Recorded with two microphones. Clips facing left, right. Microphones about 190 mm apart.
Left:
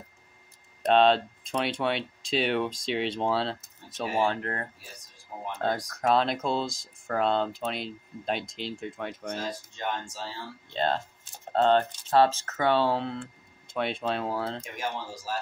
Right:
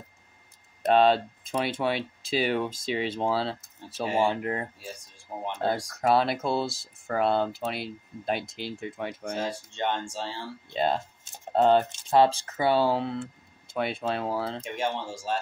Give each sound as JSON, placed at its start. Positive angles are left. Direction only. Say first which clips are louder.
{"t": 0.8, "sound": "speech", "louder": "even", "side_deg": -5}
{"t": 4.0, "sound": "speech", "louder": "right 2 dB", "side_deg": -25}
{"t": 4.3, "sound": "speech", "louder": "right 3 dB", "side_deg": -10}
{"t": 5.3, "sound": "speech", "louder": "right 4 dB", "side_deg": -35}
{"t": 5.9, "sound": "speech", "louder": "right 1 dB", "side_deg": -5}
{"t": 9.4, "sound": "speech", "louder": "right 4 dB", "side_deg": -30}
{"t": 10.7, "sound": "speech", "louder": "right 1 dB", "side_deg": -10}
{"t": 14.6, "sound": "speech", "louder": "right 4 dB", "side_deg": -25}